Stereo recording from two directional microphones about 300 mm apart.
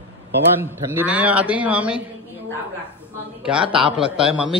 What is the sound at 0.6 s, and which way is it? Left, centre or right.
A man's voice, centre.